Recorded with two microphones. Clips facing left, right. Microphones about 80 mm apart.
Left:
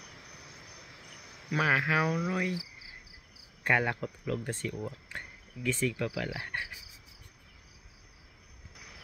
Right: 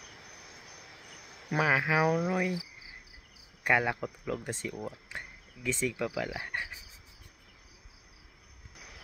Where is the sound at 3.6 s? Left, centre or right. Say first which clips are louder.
Right 1 dB; centre.